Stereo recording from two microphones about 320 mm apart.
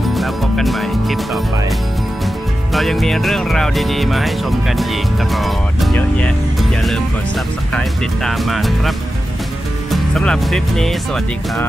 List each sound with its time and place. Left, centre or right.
0.1 s speech: centre
2.7 s music: centre